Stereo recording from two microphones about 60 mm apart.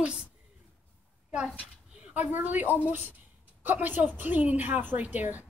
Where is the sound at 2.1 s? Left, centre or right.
Right.